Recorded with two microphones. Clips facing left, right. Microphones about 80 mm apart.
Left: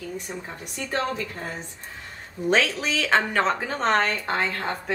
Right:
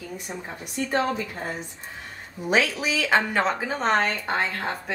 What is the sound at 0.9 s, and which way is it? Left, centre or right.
Speech, centre.